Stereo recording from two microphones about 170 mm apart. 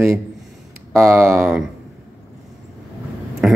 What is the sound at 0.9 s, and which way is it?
Speech, 15° right (ahead or behind).